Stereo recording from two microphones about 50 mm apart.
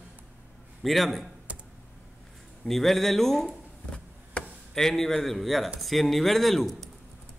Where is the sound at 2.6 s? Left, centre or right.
Centre.